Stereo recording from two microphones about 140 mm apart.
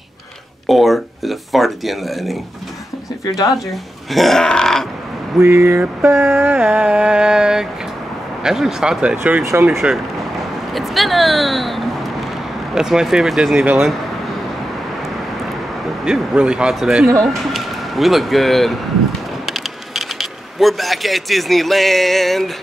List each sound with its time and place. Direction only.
0.7 s speech: centre (ahead or behind)
3.3 s speech: 25° left (ahead or behind)
3.5 s speech: centre (ahead or behind)
5.4 s a sound: 20° right (ahead or behind)
9.7 s speech: centre (ahead or behind)
16.1 s speech: 5° right (ahead or behind)